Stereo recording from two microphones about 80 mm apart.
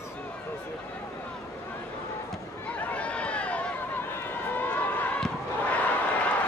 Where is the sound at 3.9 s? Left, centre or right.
Left.